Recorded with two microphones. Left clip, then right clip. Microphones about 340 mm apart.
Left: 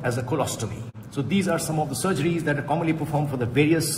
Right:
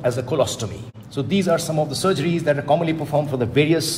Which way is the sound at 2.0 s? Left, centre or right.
Right.